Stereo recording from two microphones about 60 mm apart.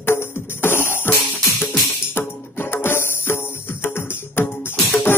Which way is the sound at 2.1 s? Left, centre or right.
Left.